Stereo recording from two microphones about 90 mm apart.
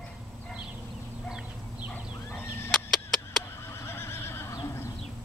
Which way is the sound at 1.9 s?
25° left (ahead or behind).